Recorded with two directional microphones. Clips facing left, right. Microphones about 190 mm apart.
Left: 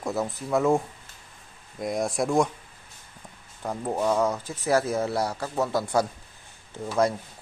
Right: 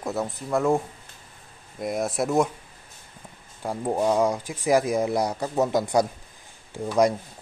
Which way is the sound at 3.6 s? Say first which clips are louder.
Right 2 dB; 15° right (ahead or behind).